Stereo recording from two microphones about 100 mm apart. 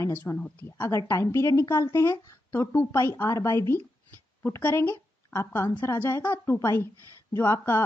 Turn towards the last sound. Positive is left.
turn(degrees=25)  # may be behind; listen again after turning